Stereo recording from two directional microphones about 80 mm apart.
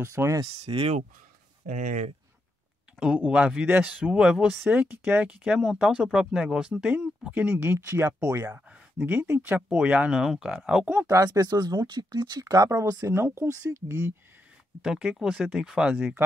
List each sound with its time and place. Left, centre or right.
0.0 s speech: right
0.7 s speech: right
3.0 s speech: centre
3.6 s speech: right
4.0 s speech: centre
4.6 s speech: right
7.5 s speech: right
9.0 s speech: right
9.8 s speech: centre
10.1 s speech: centre
11.2 s speech: right
13.0 s speech: right
14.8 s speech: centre